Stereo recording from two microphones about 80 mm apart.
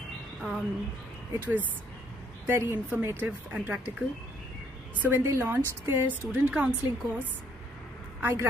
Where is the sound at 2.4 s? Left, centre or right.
Right.